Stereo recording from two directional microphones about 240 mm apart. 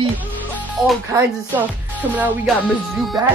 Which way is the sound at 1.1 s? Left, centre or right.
Centre.